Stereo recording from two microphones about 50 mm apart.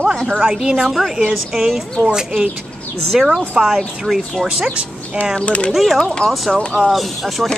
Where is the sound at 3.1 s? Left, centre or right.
Centre.